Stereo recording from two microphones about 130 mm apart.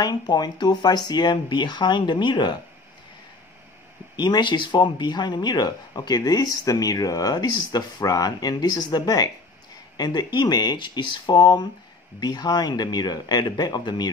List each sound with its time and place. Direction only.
0.0 s speech: 30° left (ahead or behind)
4.2 s speech: 35° left (ahead or behind)